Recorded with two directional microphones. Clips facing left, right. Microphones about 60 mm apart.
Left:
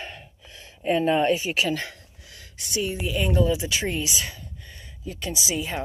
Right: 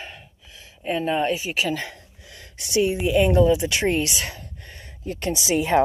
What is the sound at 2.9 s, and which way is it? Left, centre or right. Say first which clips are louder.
A woman's voice: right 6 dB; right.